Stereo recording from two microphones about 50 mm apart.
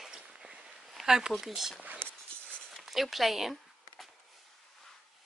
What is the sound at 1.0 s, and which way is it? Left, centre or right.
Speech, centre.